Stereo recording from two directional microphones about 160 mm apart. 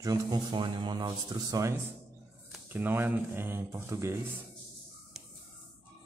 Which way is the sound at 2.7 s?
10° right (ahead or behind).